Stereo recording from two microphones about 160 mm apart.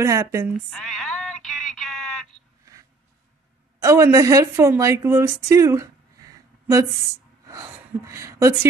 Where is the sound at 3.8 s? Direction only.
20° right (ahead or behind).